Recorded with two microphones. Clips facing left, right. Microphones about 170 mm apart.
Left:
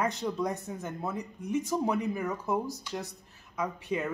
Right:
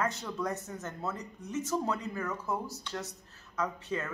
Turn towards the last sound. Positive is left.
turn(degrees=15)  # may be behind; listen again after turning